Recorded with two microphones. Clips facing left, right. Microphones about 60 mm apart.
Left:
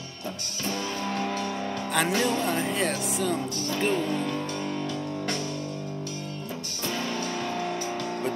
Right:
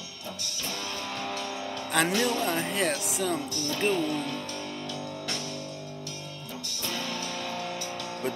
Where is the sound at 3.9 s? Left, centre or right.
Left.